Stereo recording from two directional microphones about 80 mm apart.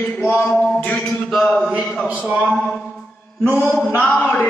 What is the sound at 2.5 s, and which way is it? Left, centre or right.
Music, centre.